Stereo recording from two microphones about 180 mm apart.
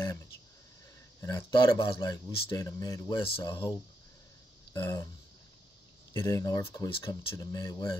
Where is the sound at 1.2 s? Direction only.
25° left (ahead or behind).